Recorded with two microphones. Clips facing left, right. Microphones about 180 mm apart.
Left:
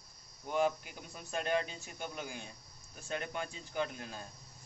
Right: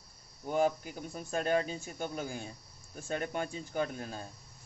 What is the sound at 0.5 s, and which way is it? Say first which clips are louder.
Speech: right 3 dB; 40° right (ahead or behind).